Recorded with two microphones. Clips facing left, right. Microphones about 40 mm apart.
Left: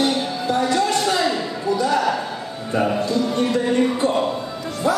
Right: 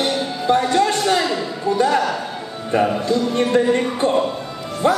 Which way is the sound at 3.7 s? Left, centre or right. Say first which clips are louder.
Right 1 dB; right.